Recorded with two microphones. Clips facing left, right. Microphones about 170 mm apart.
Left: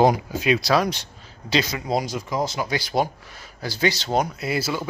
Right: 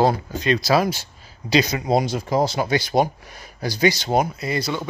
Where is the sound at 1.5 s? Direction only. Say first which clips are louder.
Right 4 dB; 20° right (ahead or behind).